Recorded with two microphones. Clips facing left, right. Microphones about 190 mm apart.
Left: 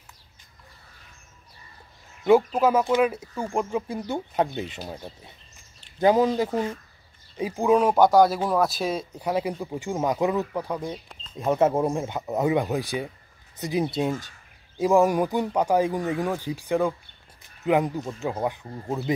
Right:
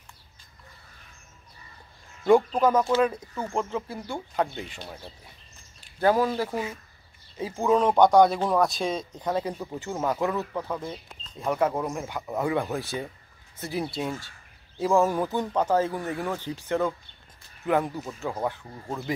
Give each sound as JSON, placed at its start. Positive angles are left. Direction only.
{"t": 2.2, "sound": "speech", "side_deg": 5}
{"t": 6.5, "sound": "speech", "side_deg": -5}
{"t": 7.3, "sound": "speech", "side_deg": 15}